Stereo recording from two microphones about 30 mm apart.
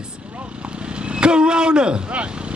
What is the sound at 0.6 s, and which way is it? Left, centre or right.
Vehicle, right.